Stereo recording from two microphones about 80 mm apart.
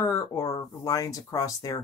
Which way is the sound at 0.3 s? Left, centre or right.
Left.